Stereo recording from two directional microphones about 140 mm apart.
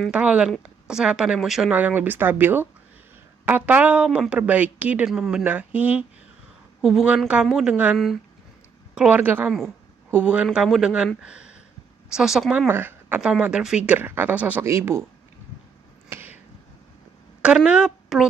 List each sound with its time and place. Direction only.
0.1 s speech: 10° right (ahead or behind)
12.1 s speech: 5° right (ahead or behind)
12.6 s speech: 15° right (ahead or behind)
16.1 s a sound: 15° right (ahead or behind)
17.4 s a woman's voice: 5° right (ahead or behind)